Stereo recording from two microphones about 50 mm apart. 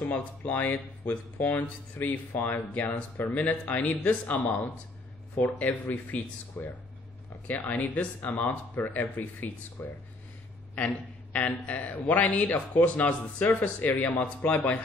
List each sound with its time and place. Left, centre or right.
0.0 s a man's voice: left